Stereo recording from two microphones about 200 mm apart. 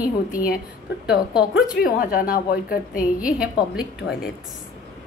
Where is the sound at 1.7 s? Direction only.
45° left (ahead or behind).